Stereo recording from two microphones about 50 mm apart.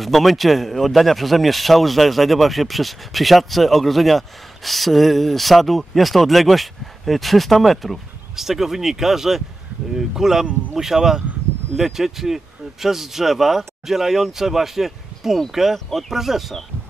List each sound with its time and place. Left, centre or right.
0.0 s a man's voice: centre